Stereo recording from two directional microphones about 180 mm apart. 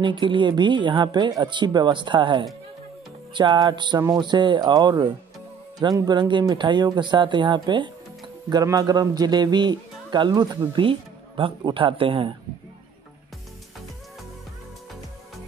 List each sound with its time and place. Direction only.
0.0 s speech: 25° right (ahead or behind)